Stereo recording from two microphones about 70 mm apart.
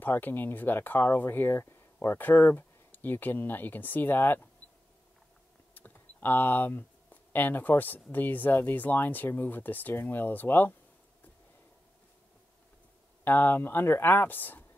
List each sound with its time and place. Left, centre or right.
0.0 s speech: left
5.8 s speech: left
13.2 s speech: left